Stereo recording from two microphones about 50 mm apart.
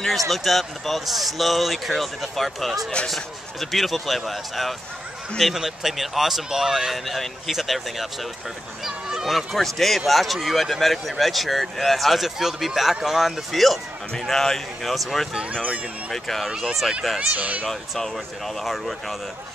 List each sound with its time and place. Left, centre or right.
0.0 s speech: centre
8.8 s a sound: centre
9.6 s speech: centre
15.5 s speech: right
16.1 s speech: centre
16.4 s speech: centre
17.4 s speech: right
17.6 s speech: centre